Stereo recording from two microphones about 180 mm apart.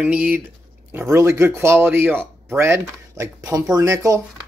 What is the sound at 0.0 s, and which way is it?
Speech, 5° right (ahead or behind).